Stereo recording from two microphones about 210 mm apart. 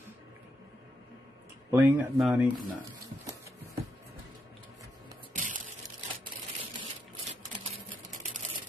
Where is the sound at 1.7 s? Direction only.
10° right (ahead or behind).